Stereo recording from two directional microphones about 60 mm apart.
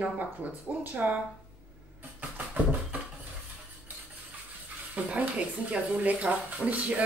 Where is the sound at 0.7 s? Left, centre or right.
Centre.